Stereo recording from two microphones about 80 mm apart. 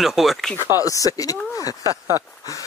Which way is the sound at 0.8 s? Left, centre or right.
Left.